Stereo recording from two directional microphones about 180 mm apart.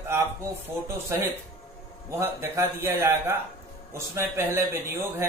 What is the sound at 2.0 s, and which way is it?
Speech, 15° right (ahead or behind).